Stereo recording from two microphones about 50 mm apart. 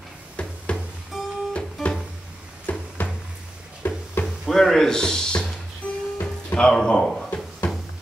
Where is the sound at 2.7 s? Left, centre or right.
Left.